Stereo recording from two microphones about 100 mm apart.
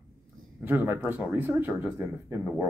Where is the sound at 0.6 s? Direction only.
20° right (ahead or behind).